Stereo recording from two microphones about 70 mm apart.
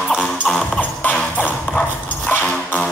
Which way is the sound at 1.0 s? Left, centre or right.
Left.